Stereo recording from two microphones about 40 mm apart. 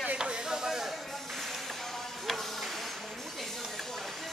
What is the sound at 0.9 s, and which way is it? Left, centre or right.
Music, centre.